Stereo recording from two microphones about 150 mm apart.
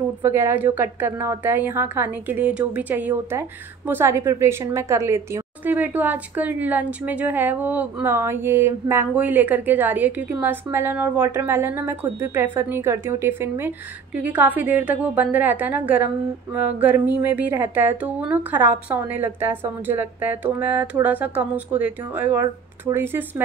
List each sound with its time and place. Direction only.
0.2 s a woman's voice: 15° right (ahead or behind)
22.4 s speech: 25° right (ahead or behind)